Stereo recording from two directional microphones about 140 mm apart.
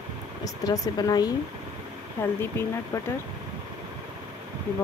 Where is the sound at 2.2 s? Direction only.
15° left (ahead or behind).